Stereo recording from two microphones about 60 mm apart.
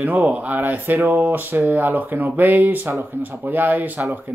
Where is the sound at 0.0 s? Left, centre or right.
Right.